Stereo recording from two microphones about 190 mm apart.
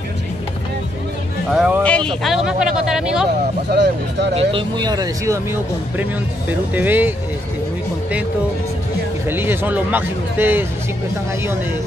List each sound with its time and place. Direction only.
1.5 s music: 5° right (ahead or behind)
1.8 s speech: 5° left (ahead or behind)
3.7 s speech: 60° right (ahead or behind)
4.4 s speech: 30° right (ahead or behind); by 7.2 s 10° right (ahead or behind)
9.3 s speech: 10° right (ahead or behind)